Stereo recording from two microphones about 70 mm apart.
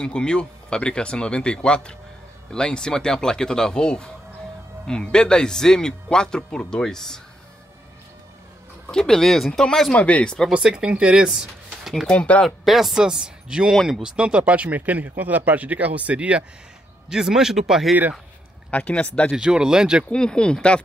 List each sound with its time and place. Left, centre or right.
0.0 s speech: centre
8.8 s speech: centre
9.9 s speech: centre
10.5 s speech: centre
12.1 s speech: centre
12.4 s a man's voice: centre
18.7 s speech: centre
19.3 s a man's voice: centre
20.1 s speech: centre